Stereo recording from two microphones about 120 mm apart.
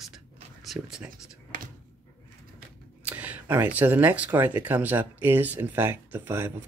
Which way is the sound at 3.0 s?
15° right (ahead or behind).